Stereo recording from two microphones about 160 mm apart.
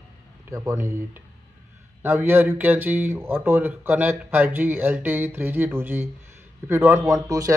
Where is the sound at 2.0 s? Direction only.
10° right (ahead or behind).